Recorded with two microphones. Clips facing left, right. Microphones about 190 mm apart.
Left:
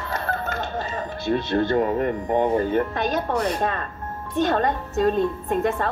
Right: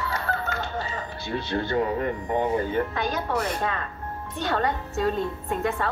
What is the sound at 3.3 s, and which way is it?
Speech, 40° left (ahead or behind).